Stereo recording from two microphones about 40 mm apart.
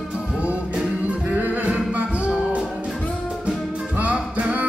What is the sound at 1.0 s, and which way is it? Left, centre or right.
Music, right.